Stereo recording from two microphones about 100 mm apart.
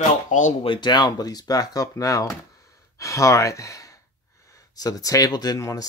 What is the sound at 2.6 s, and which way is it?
Sigh, 30° left (ahead or behind).